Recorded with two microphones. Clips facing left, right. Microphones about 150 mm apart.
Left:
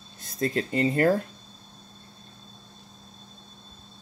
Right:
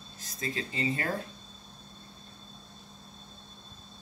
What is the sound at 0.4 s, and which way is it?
Speech, 55° left (ahead or behind).